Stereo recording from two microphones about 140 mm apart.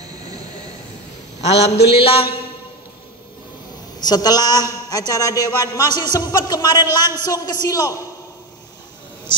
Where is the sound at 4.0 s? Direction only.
30° left (ahead or behind).